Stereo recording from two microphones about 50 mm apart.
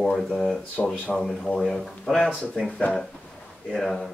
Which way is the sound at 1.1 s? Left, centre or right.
Centre.